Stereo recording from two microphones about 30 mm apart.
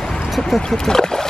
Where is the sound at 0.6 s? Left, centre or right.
Centre.